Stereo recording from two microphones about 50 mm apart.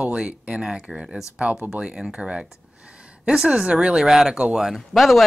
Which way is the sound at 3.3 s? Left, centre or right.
Centre.